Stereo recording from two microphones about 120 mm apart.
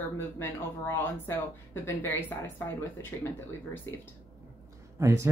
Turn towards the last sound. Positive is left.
turn(degrees=-25)  # may be behind; listen again after turning